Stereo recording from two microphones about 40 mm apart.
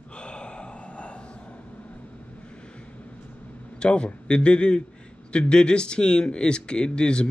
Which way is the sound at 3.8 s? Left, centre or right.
Left.